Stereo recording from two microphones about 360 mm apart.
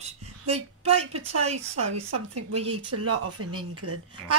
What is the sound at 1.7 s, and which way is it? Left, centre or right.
A man's voice, right.